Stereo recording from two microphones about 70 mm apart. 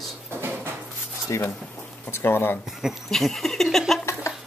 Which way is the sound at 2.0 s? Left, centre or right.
Left.